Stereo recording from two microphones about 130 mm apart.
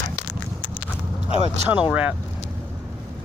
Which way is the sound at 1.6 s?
10° right (ahead or behind).